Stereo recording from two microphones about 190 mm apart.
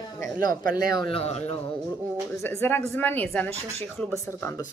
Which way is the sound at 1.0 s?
30° left (ahead or behind).